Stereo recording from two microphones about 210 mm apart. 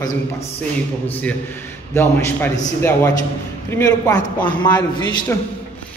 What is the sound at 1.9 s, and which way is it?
A man's voice, 10° left (ahead or behind).